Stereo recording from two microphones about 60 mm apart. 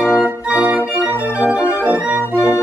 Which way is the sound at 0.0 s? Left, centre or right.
Right.